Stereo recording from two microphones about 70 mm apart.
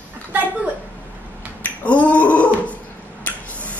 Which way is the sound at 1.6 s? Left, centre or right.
Left.